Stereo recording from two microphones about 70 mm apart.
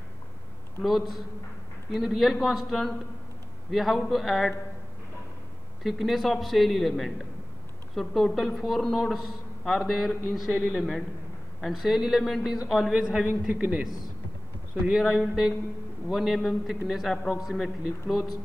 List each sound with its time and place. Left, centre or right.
0.8 s a man's voice: centre
5.9 s a man's voice: centre
15.0 s a man's voice: centre